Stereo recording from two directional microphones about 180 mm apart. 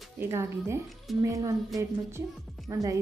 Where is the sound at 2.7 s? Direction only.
15° right (ahead or behind).